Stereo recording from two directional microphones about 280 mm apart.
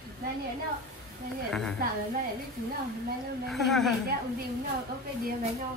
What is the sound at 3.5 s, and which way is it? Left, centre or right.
Speech, centre.